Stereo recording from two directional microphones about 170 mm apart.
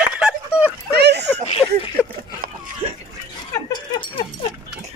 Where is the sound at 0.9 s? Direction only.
80° right.